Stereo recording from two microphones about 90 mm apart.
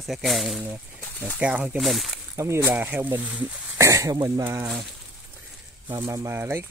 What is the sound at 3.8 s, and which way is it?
Speech, 35° right (ahead or behind).